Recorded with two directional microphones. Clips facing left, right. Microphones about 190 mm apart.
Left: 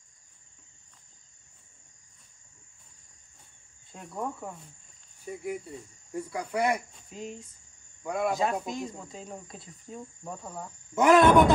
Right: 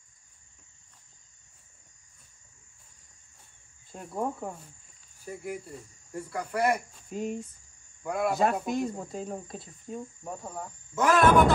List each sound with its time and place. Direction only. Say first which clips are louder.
3.9 s cricket: right 3 dB; 30° right (ahead or behind)
5.2 s speech: left 2 dB; centre (ahead or behind)
7.1 s cricket: right 7 dB; 55° right (ahead or behind)
8.0 s speech: even; 5° right (ahead or behind)
8.6 s speech: right 5 dB; 60° right (ahead or behind)
9.3 s cricket: right 5 dB; 25° right (ahead or behind)
9.9 s cricket: right 2 dB; 10° right (ahead or behind)
11.0 s speech: left 4 dB; 20° left (ahead or behind)